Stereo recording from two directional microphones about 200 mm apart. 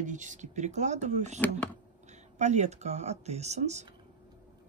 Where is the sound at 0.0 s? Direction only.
40° right (ahead or behind).